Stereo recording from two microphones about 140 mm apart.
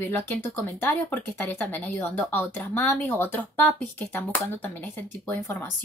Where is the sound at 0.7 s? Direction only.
10° left (ahead or behind).